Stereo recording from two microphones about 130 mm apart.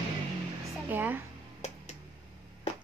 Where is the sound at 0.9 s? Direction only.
15° right (ahead or behind).